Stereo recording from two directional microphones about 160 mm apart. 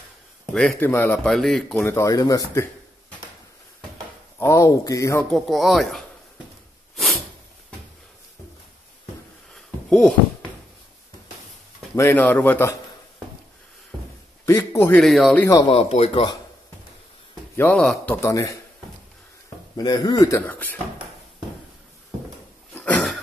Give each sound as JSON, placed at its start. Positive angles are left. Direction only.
{"t": 0.5, "sound": "speech", "side_deg": 5}
{"t": 1.3, "sound": "speech", "side_deg": 0}
{"t": 4.4, "sound": "speech", "side_deg": 20}
{"t": 5.3, "sound": "speech", "side_deg": 0}
{"t": 9.5, "sound": "a sound", "side_deg": 0}
{"t": 11.9, "sound": "speech", "side_deg": 10}
{"t": 14.4, "sound": "a man's voice", "side_deg": 15}
{"t": 15.0, "sound": "speech", "side_deg": 0}
{"t": 15.6, "sound": "speech", "side_deg": 35}
{"t": 17.6, "sound": "speech", "side_deg": 10}
{"t": 19.8, "sound": "speech", "side_deg": 25}
{"t": 20.3, "sound": "speech", "side_deg": 10}